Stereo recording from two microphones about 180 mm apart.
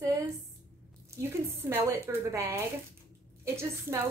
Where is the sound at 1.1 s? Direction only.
15° right (ahead or behind).